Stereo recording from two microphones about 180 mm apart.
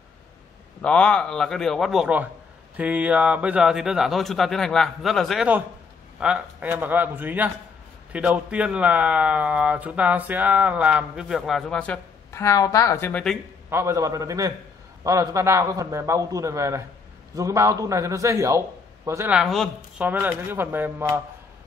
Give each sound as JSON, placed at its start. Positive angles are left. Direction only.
{"t": 0.8, "sound": "a man's voice", "side_deg": 5}
{"t": 13.7, "sound": "a man's voice", "side_deg": -15}
{"t": 20.1, "sound": "a man's voice", "side_deg": -10}